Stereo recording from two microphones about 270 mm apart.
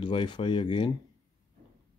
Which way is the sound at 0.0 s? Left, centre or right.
Centre.